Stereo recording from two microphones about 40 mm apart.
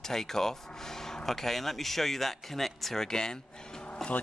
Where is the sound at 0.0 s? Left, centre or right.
Centre.